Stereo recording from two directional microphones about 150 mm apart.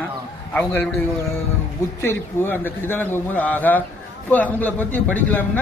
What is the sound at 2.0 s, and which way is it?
Speech, 15° left (ahead or behind).